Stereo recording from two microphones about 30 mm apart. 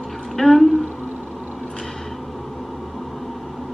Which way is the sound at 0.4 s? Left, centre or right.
Left.